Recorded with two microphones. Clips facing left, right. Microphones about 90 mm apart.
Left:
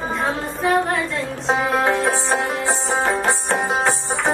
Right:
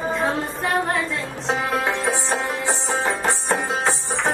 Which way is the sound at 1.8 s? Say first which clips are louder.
Left 4 dB; centre (ahead or behind).